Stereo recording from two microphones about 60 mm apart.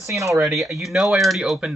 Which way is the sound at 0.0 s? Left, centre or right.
Right.